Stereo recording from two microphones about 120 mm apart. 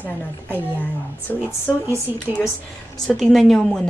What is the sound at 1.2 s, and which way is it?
Speech, 15° left (ahead or behind).